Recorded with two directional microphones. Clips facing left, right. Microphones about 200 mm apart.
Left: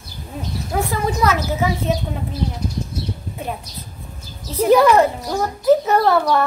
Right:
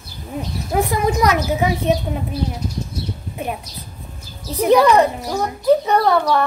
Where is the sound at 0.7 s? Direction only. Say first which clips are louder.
Right 3 dB; 15° right (ahead or behind).